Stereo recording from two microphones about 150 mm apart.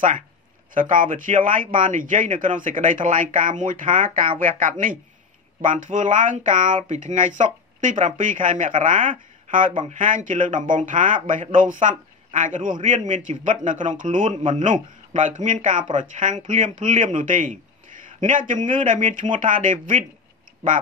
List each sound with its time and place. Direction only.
0.7 s speech: 65° right (ahead or behind)